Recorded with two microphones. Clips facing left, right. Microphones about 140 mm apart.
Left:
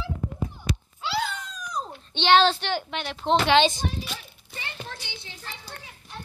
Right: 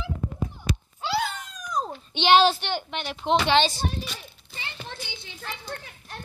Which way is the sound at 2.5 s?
Centre (ahead or behind).